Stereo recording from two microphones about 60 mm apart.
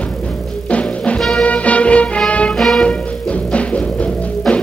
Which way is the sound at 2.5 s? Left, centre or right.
Centre.